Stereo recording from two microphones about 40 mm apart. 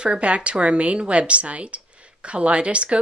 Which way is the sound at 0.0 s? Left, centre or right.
Right.